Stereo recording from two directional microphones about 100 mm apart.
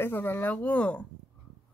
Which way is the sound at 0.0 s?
20° left (ahead or behind).